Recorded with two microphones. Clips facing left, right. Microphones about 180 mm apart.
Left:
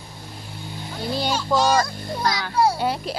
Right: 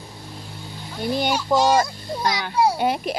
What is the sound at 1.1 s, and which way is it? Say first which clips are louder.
A child's voice: right 2 dB; 15° right (ahead or behind).